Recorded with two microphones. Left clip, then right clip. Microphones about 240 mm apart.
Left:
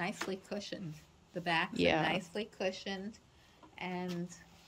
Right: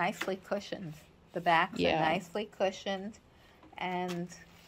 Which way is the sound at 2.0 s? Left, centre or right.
Centre.